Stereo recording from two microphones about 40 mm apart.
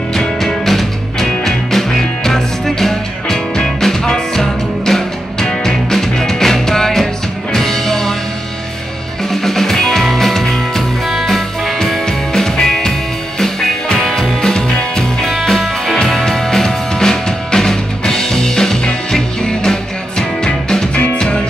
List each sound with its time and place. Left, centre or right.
0.4 s music: centre
9.3 s music: centre
12.1 s music: centre